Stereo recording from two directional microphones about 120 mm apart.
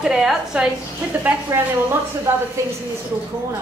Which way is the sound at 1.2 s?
15° right (ahead or behind).